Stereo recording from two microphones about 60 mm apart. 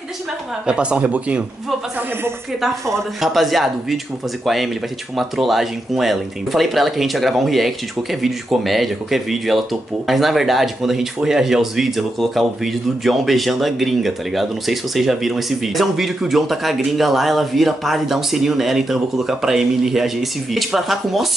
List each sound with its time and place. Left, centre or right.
0.7 s speech: centre
3.2 s speech: centre
5.1 s speech: centre